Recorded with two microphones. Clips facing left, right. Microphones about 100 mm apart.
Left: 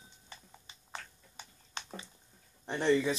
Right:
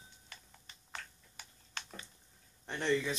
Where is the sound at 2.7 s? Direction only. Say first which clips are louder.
Left 5 dB; 30° left (ahead or behind).